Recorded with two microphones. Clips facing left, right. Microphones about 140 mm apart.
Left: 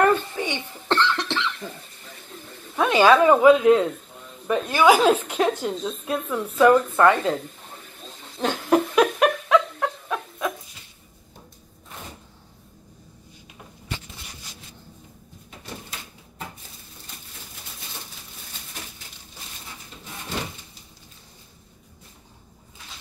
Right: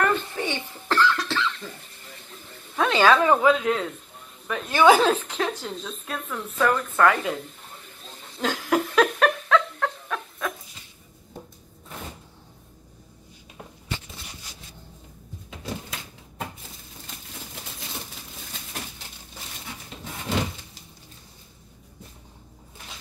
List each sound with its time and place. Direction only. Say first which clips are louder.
0.0 s cough: left 4 dB; 20° left (ahead or behind)
2.7 s speech: left 3 dB; 15° left (ahead or behind)
4.6 s a woman's voice: even; 10° left (ahead or behind)
8.4 s laughter: left 3 dB; 25° left (ahead or behind)
8.9 s a sound: left 2 dB; 15° left (ahead or behind)